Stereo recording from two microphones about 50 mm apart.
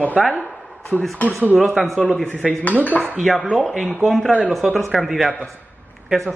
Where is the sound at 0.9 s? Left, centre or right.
Left.